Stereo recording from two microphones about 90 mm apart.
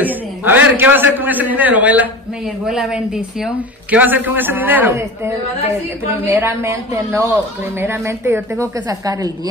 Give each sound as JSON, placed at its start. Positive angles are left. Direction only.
{"t": 0.0, "sound": "a man's voice", "side_deg": -20}
{"t": 2.6, "sound": "a woman's voice", "side_deg": -5}
{"t": 3.9, "sound": "a man's voice", "side_deg": -20}
{"t": 6.2, "sound": "a woman's voice", "side_deg": -30}
{"t": 8.8, "sound": "a woman's voice", "side_deg": -40}